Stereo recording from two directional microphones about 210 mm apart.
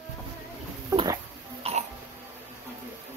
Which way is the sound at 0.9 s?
20° right (ahead or behind).